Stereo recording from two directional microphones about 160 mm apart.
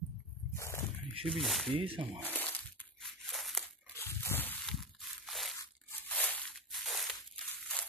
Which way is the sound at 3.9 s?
15° left (ahead or behind).